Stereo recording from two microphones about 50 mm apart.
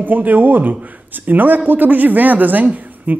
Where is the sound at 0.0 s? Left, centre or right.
Right.